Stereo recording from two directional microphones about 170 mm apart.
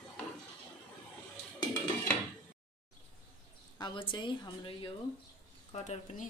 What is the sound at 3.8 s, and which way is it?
A woman's voice, 25° left (ahead or behind).